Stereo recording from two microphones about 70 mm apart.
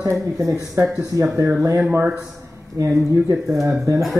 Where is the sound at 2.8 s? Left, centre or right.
Right.